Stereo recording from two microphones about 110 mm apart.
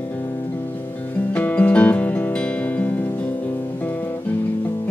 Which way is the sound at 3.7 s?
20° left (ahead or behind).